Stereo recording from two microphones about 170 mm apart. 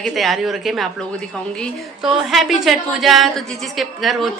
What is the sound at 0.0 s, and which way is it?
Speech, centre (ahead or behind).